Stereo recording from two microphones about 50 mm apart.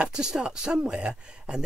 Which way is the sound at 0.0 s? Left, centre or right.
Centre.